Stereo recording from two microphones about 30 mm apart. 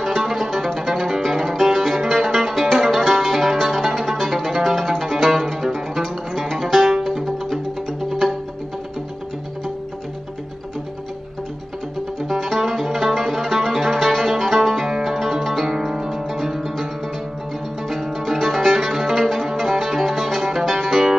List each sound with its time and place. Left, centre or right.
0.0 s music: centre
12.2 s music: centre
17.8 s music: centre